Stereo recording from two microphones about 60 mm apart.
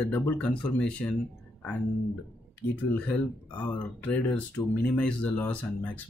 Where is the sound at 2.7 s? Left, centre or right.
Left.